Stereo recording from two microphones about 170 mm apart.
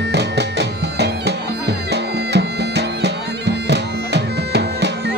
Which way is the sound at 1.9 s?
80° right.